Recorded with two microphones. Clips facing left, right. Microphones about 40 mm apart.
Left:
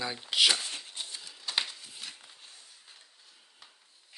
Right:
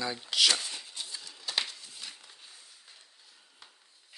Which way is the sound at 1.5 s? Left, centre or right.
Centre.